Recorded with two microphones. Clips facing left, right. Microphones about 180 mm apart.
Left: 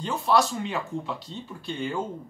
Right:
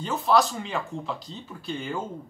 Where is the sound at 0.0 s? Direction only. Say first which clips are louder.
Right 1 dB; centre (ahead or behind).